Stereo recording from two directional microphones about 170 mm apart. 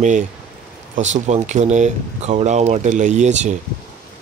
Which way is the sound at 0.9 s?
45° right (ahead or behind).